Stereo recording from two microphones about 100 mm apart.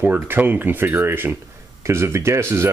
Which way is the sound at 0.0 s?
20° right (ahead or behind).